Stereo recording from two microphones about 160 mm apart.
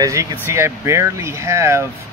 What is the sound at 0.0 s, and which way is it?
Speech, 20° right (ahead or behind).